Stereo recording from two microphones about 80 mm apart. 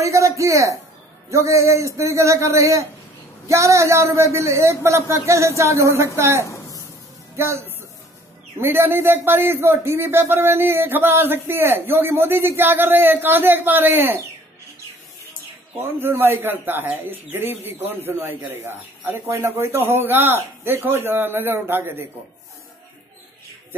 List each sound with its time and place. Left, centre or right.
0.0 s a sound: right
1.3 s a man's voice: right
15.8 s a man's voice: right